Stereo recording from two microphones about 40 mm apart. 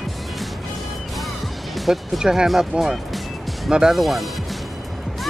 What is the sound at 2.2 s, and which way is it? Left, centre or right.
Speech, centre.